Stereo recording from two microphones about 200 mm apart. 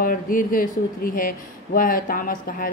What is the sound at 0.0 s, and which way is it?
Speech, 45° left (ahead or behind).